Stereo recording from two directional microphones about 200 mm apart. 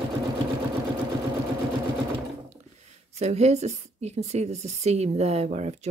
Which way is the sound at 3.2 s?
35° right (ahead or behind).